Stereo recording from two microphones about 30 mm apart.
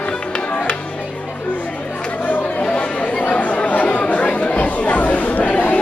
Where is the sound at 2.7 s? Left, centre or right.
Left.